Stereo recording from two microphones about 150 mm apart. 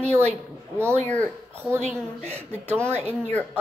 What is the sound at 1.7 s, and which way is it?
Speech, 50° right (ahead or behind).